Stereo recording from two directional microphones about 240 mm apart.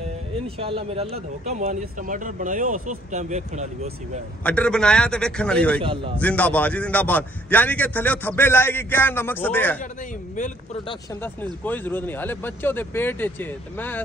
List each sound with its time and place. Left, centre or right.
0.6 s speech: right
4.4 s a man's voice: centre
5.8 s speech: right
6.1 s a man's voice: centre
11.6 s a man's voice: centre